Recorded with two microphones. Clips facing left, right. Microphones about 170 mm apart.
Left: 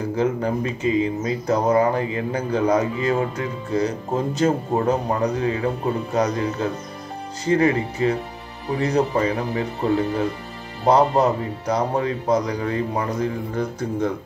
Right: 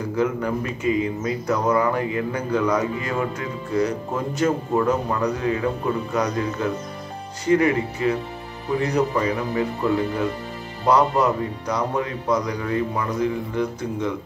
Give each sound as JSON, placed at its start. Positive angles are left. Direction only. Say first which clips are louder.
{"t": 0.1, "sound": "speech", "louder": "even", "side_deg": 30}
{"t": 10.9, "sound": "speech", "louder": "left 2 dB", "side_deg": 30}